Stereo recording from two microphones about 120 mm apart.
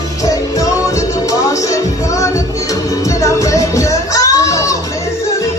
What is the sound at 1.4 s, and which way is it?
Music, 25° left (ahead or behind).